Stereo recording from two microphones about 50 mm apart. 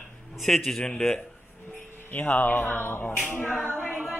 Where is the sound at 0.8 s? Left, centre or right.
Centre.